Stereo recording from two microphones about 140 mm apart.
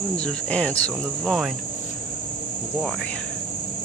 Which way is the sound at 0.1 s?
10° left (ahead or behind).